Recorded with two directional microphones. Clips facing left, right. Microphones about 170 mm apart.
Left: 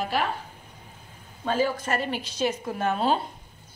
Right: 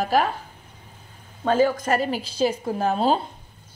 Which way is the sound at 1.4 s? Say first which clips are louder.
Right 6 dB; 45° right (ahead or behind).